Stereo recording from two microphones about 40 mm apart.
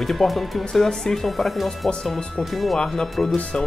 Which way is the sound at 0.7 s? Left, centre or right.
Centre.